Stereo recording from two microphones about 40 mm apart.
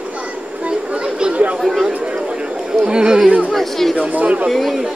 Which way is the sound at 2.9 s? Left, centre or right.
Right.